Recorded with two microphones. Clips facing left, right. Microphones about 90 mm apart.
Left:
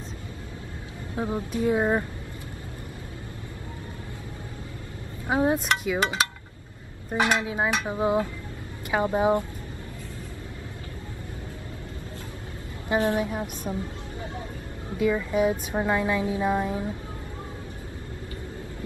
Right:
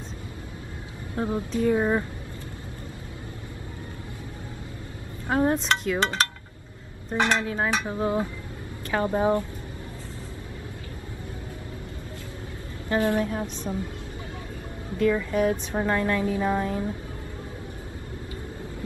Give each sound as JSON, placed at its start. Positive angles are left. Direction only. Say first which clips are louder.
{"t": 1.1, "sound": "a woman's voice", "louder": "right 1 dB", "side_deg": 10}
{"t": 5.3, "sound": "a woman's voice", "louder": "even", "side_deg": 10}
{"t": 12.8, "sound": "a woman's voice", "louder": "even", "side_deg": 20}
{"t": 15.0, "sound": "a woman's voice", "louder": "right 1 dB", "side_deg": 10}